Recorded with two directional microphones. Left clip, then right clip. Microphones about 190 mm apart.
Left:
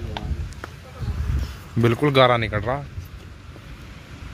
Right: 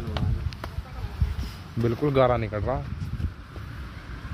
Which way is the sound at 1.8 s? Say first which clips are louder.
Left 6 dB; 25° left (ahead or behind).